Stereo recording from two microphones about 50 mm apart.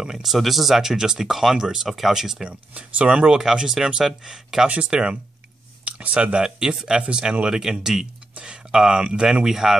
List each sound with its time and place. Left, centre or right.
0.0 s speech: centre
2.7 s speech: right; by 9.8 s centre